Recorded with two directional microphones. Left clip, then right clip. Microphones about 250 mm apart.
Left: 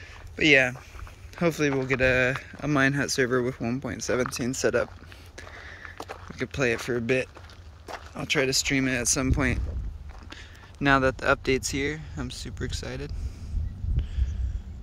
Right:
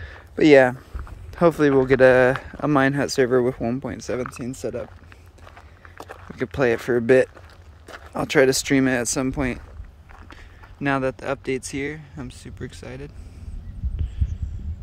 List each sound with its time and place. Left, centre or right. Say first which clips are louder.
0.0 s a sound: right 5 dB; right
1.3 s speech: right 8 dB; centre
6.2 s speech: right 6 dB; centre